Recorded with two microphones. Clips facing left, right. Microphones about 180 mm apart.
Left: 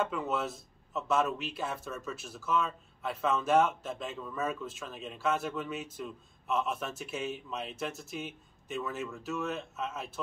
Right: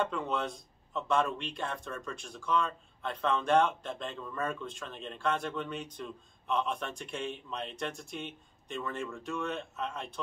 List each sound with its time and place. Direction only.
0.0 s a man's voice: 5° left (ahead or behind)